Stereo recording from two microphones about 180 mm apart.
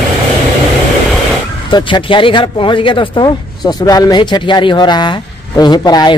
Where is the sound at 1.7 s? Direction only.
25° left (ahead or behind).